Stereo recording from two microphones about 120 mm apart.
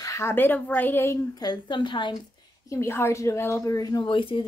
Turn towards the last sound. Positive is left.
turn(degrees=45)  # may be behind; listen again after turning